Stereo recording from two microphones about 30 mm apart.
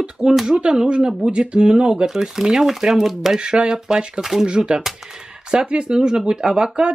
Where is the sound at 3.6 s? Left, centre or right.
Centre.